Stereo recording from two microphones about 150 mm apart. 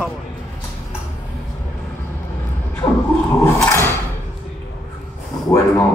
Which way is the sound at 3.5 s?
10° left (ahead or behind).